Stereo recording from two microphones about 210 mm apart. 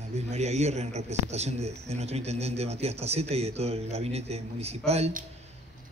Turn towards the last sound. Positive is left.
turn(degrees=-30)  # may be behind; listen again after turning